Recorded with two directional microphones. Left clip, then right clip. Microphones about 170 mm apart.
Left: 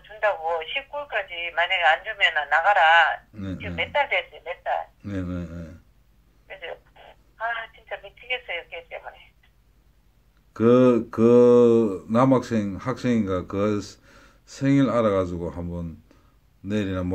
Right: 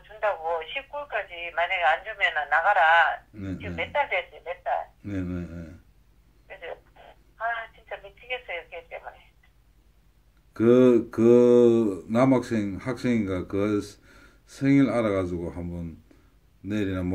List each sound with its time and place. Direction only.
0.0 s speech: 10° left (ahead or behind)
5.0 s a sound: 40° left (ahead or behind)
6.4 s telephone: 15° left (ahead or behind)
10.5 s speech: 40° left (ahead or behind)